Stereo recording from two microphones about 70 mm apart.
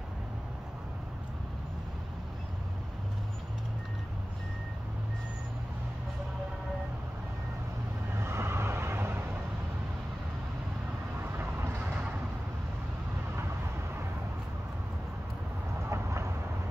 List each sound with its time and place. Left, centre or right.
8.2 s vehicle: right
11.3 s vehicle: right
11.8 s a sound: right
15.9 s vehicle: right